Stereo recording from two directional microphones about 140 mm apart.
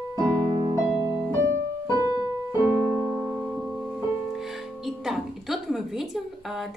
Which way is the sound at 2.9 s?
5° right (ahead or behind).